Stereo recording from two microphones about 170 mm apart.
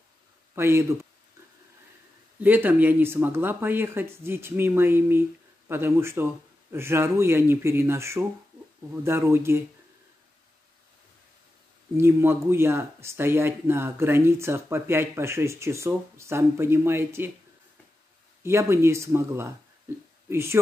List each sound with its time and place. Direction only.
0.6 s speech: 15° right (ahead or behind)
2.4 s speech: 10° right (ahead or behind)
12.0 s speech: 15° right (ahead or behind)
18.4 s speech: 15° right (ahead or behind)